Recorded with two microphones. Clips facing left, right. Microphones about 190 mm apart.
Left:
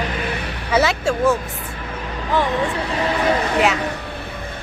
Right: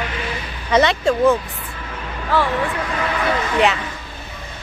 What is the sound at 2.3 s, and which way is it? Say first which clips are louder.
Speech: even; 20° left (ahead or behind).